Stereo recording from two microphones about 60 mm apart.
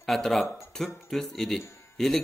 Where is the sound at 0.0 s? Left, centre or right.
Centre.